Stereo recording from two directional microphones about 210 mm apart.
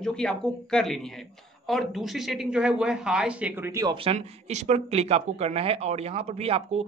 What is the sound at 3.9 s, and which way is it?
Speech, 30° right (ahead or behind).